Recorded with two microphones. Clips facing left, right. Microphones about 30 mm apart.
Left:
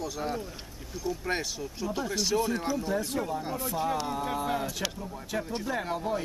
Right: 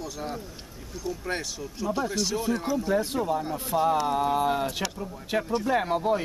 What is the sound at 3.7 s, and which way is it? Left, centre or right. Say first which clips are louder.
Speech: right 8 dB; right.